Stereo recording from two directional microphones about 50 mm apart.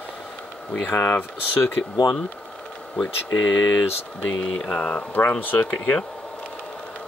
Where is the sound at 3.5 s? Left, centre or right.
Left.